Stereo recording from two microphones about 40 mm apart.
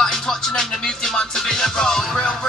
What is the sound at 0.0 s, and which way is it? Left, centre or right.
Music, centre.